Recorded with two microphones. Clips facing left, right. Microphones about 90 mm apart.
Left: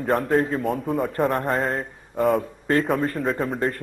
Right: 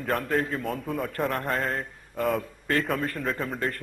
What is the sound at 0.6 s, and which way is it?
A man's voice, centre (ahead or behind).